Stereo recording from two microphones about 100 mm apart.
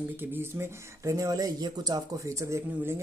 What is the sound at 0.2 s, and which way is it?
Speech, 25° right (ahead or behind).